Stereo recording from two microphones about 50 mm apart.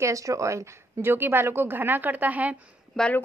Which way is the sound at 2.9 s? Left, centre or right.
Centre.